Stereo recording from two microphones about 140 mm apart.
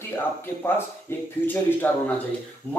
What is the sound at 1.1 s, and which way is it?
Speech, 15° left (ahead or behind).